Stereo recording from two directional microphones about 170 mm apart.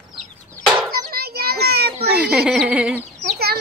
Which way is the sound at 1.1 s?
65° right (ahead or behind).